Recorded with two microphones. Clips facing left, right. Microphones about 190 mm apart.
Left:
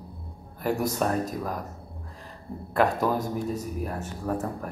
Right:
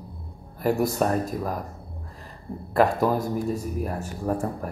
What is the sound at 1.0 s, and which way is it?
Speech, 5° right (ahead or behind).